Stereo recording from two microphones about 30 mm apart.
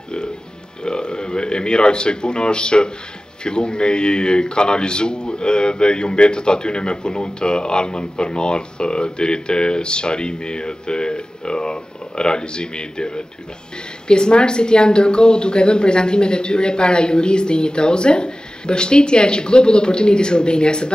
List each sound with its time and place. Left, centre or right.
0.8 s speech: left